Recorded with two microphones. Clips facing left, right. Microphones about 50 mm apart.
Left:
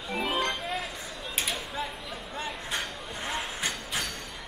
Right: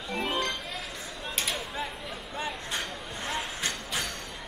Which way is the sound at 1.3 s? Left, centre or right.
Centre.